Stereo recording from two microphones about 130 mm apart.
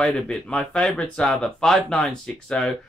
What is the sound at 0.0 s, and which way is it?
Speech, 5° left (ahead or behind).